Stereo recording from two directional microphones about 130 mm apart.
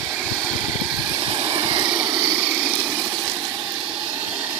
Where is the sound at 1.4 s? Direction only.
45° right (ahead or behind).